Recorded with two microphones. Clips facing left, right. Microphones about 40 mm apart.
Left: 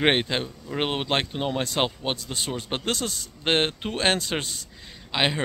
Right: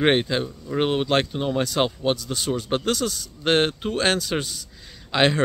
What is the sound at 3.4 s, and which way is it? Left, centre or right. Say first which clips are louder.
Speech: right 3 dB; left.